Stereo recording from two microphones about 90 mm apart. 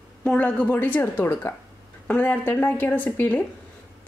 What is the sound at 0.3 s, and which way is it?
A woman's voice, 15° left (ahead or behind).